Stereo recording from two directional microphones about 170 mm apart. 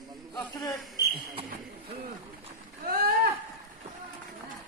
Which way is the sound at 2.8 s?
65° right (ahead or behind).